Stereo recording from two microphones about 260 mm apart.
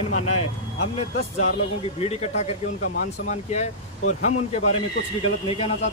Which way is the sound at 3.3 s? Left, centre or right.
Left.